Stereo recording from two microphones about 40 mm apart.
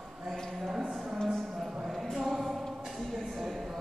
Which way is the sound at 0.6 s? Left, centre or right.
Centre.